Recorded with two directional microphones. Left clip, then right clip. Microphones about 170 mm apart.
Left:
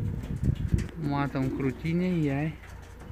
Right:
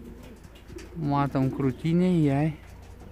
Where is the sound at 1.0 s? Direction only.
40° right (ahead or behind).